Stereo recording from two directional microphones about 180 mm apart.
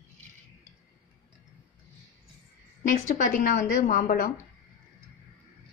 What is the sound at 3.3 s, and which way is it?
Speech, 50° left (ahead or behind).